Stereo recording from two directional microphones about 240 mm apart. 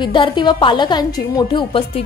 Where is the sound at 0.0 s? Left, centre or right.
Centre.